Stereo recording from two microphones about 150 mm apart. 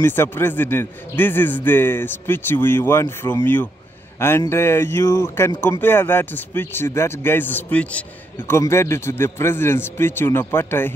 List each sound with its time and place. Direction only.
0.0 s speech: 15° left (ahead or behind)